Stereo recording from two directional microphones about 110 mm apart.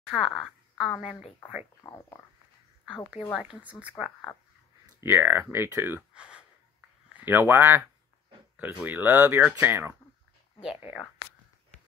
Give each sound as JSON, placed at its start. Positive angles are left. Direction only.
{"t": 0.1, "sound": "a woman's voice", "side_deg": 0}
{"t": 1.8, "sound": "speech", "side_deg": 25}
{"t": 3.3, "sound": "speech", "side_deg": -10}
{"t": 5.0, "sound": "speech", "side_deg": -20}
{"t": 6.1, "sound": "gasp", "side_deg": -10}
{"t": 7.2, "sound": "speech", "side_deg": -20}
{"t": 8.8, "sound": "speech", "side_deg": -15}
{"t": 10.6, "sound": "speech", "side_deg": -5}